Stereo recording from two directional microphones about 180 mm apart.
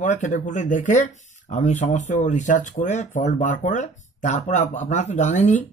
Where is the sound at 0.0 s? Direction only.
45° left (ahead or behind).